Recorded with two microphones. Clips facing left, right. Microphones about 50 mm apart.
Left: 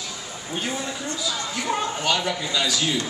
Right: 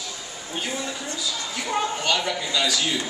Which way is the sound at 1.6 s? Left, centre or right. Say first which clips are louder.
Even; centre.